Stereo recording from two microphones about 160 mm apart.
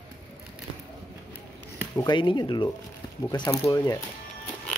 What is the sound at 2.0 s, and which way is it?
Speech, 30° left (ahead or behind).